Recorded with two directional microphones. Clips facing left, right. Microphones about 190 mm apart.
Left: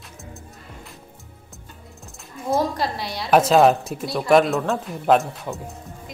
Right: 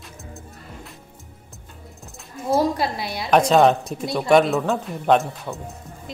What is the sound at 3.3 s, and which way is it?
Speech, 5° left (ahead or behind).